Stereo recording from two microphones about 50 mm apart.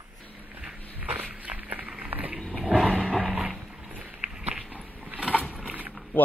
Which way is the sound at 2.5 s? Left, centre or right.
Centre.